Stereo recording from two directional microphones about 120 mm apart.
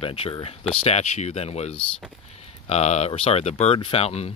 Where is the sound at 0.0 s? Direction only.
50° left (ahead or behind).